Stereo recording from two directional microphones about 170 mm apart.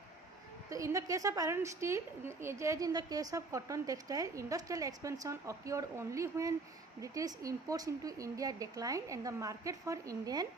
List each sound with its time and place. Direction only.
0.7 s a woman's voice: 20° right (ahead or behind)